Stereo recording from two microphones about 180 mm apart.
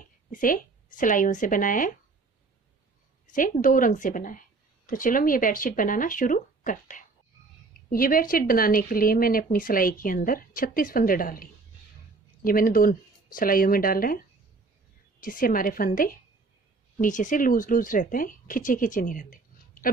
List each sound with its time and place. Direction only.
0.0 s speech: 50° left (ahead or behind)
3.3 s speech: 45° left (ahead or behind)
12.4 s speech: 50° left (ahead or behind)